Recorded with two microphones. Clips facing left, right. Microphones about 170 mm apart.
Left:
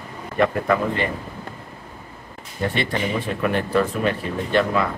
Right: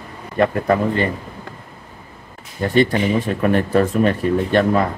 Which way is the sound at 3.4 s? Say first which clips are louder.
Right 4 dB; 45° right (ahead or behind).